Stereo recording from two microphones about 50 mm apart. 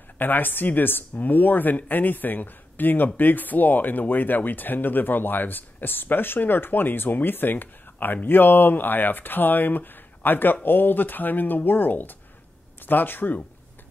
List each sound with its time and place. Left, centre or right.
0.2 s speech: left